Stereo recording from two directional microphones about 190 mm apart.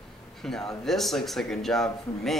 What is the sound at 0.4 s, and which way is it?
Speech, centre (ahead or behind).